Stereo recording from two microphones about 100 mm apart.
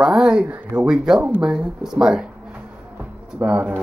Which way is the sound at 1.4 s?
10° right (ahead or behind).